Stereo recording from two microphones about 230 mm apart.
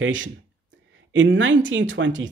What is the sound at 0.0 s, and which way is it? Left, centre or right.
Speech, right.